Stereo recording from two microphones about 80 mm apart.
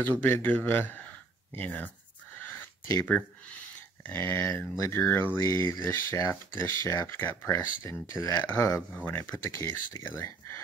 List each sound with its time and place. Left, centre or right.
0.0 s speech: left
3.1 s speech: centre; by 8.8 s left
9.0 s speech: left